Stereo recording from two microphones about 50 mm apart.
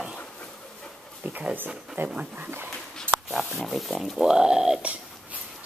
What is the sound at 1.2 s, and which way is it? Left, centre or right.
Pig, right.